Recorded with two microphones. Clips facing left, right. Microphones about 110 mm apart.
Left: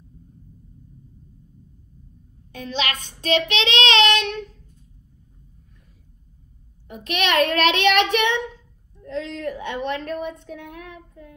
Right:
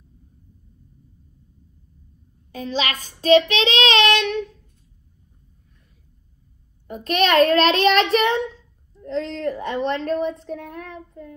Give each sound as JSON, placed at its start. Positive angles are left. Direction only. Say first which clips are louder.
{"t": 2.5, "sound": "speech", "louder": "right 2 dB", "side_deg": -35}
{"t": 6.9, "sound": "speech", "louder": "right 4 dB", "side_deg": -35}